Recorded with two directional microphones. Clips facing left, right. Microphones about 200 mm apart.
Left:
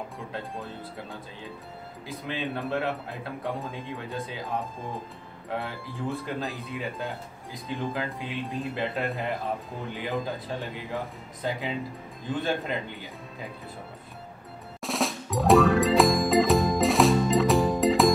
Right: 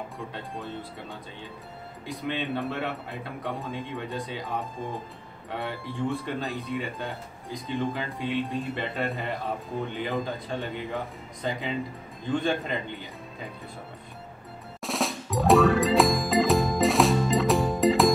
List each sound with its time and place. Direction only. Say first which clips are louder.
0.3 s speech: even; centre (ahead or behind)
12.4 s speech: right 1 dB; 5° left (ahead or behind)
14.8 s music: left 1 dB; centre (ahead or behind)